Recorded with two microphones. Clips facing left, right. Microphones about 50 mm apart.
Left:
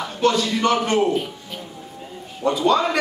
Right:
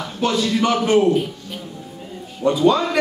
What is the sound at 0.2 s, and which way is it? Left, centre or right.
Speech, centre.